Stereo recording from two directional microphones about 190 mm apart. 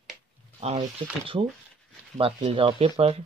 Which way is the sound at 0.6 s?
35° right (ahead or behind).